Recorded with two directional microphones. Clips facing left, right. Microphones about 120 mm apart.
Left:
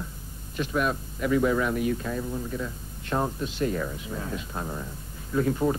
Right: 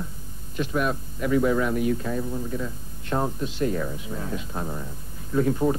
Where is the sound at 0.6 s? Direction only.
15° right (ahead or behind).